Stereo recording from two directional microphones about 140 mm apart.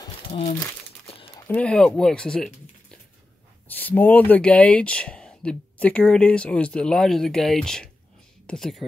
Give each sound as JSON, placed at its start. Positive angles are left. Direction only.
{"t": 0.3, "sound": "speech", "side_deg": 50}
{"t": 1.5, "sound": "speech", "side_deg": 5}